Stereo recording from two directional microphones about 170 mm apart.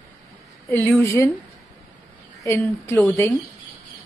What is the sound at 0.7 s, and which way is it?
Speech, 10° left (ahead or behind).